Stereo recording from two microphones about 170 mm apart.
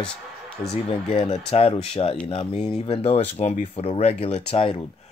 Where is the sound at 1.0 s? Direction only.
35° left (ahead or behind).